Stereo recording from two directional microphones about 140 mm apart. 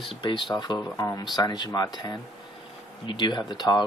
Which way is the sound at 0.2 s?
35° left (ahead or behind).